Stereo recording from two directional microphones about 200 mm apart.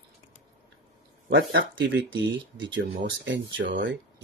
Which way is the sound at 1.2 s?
60° right (ahead or behind).